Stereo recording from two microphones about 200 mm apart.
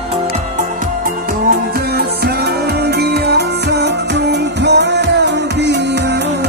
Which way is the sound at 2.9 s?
55° right (ahead or behind).